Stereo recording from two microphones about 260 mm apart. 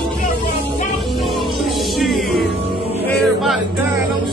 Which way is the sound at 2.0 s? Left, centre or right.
Centre.